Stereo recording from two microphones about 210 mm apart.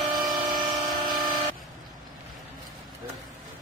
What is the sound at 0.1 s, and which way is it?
Train, 20° right (ahead or behind).